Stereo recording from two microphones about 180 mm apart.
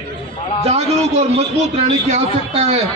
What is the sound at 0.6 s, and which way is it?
A man's voice, 35° right (ahead or behind).